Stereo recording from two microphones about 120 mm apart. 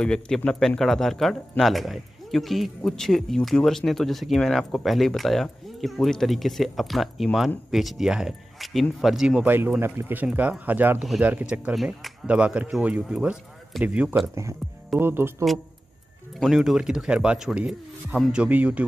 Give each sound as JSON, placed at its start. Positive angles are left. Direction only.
{"t": 0.0, "sound": "speech", "side_deg": 5}
{"t": 9.5, "sound": "speech", "side_deg": -15}
{"t": 14.2, "sound": "speech", "side_deg": -25}
{"t": 16.3, "sound": "speech", "side_deg": -5}